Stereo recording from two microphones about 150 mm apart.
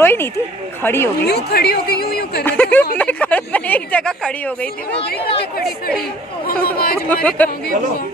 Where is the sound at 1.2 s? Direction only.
90° left.